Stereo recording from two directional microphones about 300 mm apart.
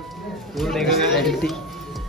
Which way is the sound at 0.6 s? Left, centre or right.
Centre.